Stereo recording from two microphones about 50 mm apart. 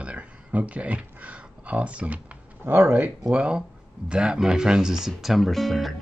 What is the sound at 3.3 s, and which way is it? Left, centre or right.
Speech, right.